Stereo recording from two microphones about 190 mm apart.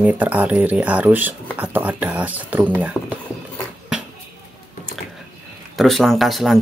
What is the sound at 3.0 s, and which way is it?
Speech, 15° left (ahead or behind).